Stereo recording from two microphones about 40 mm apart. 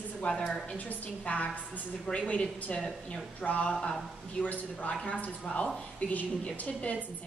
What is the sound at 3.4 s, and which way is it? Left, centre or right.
Speech, left.